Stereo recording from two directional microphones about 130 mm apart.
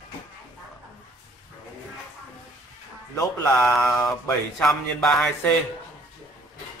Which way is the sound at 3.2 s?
20° left (ahead or behind).